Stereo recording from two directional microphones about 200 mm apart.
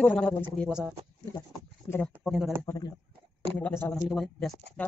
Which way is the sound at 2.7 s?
20° left (ahead or behind).